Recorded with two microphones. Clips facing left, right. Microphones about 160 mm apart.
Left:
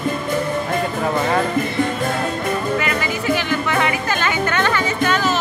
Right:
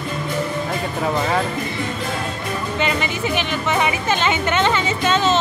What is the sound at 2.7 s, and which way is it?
Music, 20° right (ahead or behind).